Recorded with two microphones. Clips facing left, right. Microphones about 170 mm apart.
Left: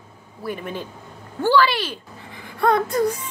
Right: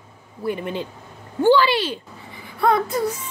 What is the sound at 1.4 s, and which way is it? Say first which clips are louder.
Speech: right 2 dB; 15° right (ahead or behind).